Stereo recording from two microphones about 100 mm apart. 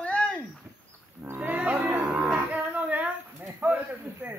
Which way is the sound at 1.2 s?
20° right (ahead or behind).